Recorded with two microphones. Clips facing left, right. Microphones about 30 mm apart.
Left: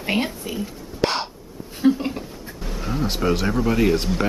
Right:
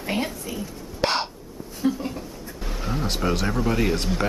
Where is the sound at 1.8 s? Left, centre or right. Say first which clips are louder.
Left 6 dB; left.